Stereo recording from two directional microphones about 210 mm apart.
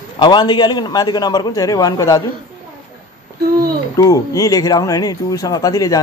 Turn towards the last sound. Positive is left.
turn(degrees=15)  # may be behind; listen again after turning